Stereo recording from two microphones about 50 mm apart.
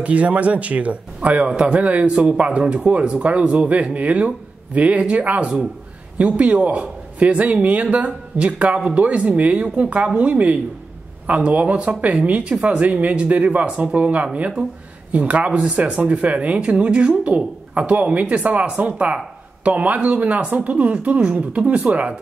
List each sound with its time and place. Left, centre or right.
0.0 s a man's voice: right